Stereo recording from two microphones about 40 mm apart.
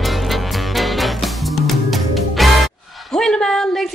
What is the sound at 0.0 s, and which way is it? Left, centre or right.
Music, centre.